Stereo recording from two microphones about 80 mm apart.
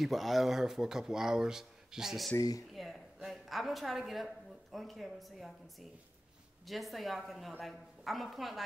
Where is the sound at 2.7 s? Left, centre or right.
Centre.